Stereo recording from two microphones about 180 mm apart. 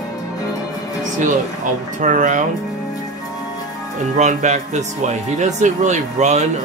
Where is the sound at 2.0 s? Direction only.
45° right (ahead or behind).